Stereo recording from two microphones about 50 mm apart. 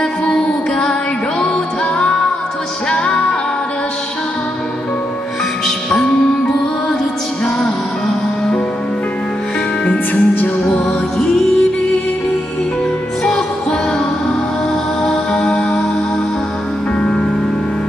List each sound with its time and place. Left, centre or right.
0.3 s music: centre
2.9 s music: centre
5.9 s music: centre
9.8 s music: left
11.1 s music: centre
13.2 s music: centre
15.0 s music: centre
17.0 s music: centre